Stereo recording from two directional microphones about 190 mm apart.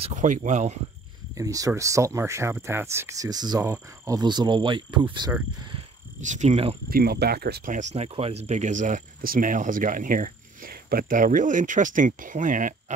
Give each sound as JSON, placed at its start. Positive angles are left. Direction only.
{"t": 0.0, "sound": "speech", "side_deg": -40}
{"t": 1.3, "sound": "speech", "side_deg": -20}
{"t": 6.2, "sound": "speech", "side_deg": -40}
{"t": 6.9, "sound": "speech", "side_deg": -55}